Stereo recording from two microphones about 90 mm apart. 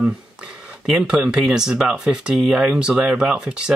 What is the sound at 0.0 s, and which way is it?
Speech, 5° right (ahead or behind).